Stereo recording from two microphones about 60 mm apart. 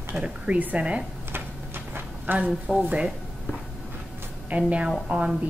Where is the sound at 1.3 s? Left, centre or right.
Right.